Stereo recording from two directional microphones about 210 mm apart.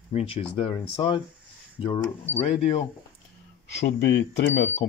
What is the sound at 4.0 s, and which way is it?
Speech, 55° left (ahead or behind).